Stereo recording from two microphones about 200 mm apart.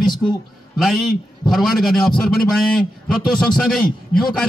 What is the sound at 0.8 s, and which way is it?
A man's voice, centre (ahead or behind).